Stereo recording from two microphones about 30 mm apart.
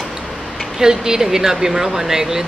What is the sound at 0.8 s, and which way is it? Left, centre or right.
Speech, centre.